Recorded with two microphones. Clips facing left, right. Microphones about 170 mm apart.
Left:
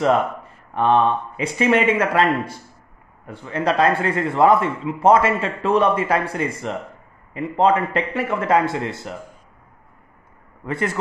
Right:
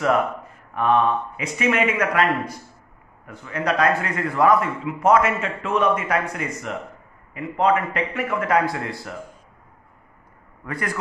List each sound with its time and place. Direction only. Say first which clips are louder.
0.0 s a man's voice: left 2 dB; 25° left (ahead or behind)
10.6 s a man's voice: left 4 dB; 25° left (ahead or behind)